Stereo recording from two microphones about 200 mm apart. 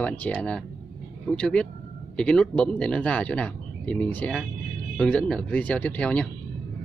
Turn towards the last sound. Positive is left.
turn(degrees=5)  # may be behind; listen again after turning